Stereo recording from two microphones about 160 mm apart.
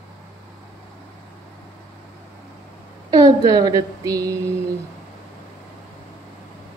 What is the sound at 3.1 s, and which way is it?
A woman's voice, 20° right (ahead or behind).